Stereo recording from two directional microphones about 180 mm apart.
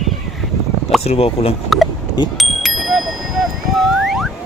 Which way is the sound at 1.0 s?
35° left (ahead or behind).